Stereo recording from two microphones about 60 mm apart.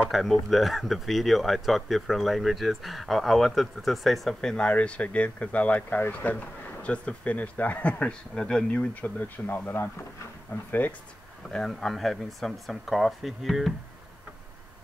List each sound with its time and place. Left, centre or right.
0.1 s speech: centre
4.4 s speech: centre
8.7 s speech: left
11.7 s speech: centre